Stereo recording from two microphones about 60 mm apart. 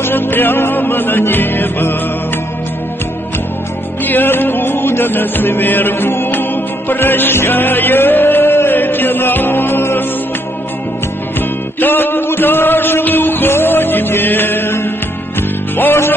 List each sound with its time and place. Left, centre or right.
0.0 s music: left
4.0 s music: left
11.8 s music: left